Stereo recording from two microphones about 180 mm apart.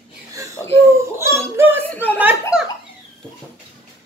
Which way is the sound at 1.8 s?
10° left (ahead or behind).